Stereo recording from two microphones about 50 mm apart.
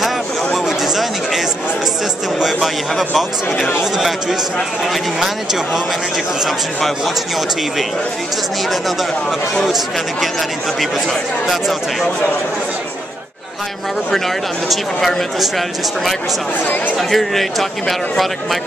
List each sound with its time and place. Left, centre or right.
0.7 s chatter: centre
2.4 s speech: centre
10.8 s speech: centre
14.1 s speech: centre
16.6 s speech: left
16.9 s speech: centre